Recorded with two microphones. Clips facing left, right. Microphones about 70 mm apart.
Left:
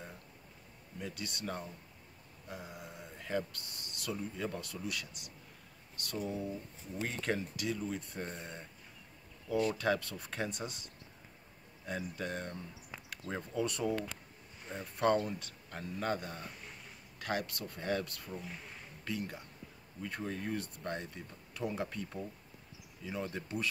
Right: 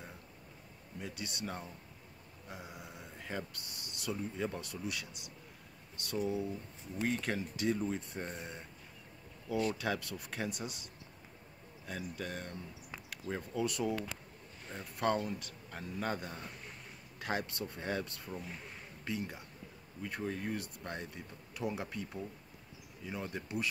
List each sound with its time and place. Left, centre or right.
1.0 s speech: centre
2.5 s a man's voice: centre
7.5 s speech: right
8.2 s speech: centre
9.8 s speech: centre
11.8 s a man's voice: centre
17.2 s speech: centre
18.3 s a man's voice: centre
19.0 s speech: centre
20.0 s speech: centre